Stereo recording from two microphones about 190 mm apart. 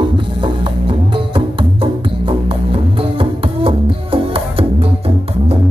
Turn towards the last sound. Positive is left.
turn(degrees=-30)  # may be behind; listen again after turning